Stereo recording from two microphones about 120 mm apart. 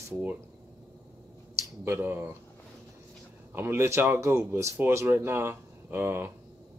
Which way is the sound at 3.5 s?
20° right (ahead or behind).